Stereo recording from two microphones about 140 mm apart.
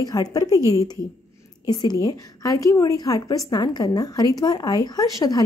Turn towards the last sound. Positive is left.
turn(degrees=25)  # may be behind; listen again after turning